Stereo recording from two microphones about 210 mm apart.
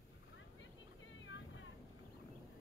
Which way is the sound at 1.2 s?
65° left (ahead or behind).